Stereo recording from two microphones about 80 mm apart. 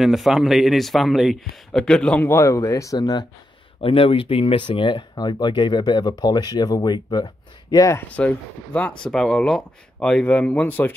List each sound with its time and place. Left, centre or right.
0.0 s speech: centre
2.2 s speech: left
3.0 s speech: left
3.9 s speech: left
8.1 s speech: centre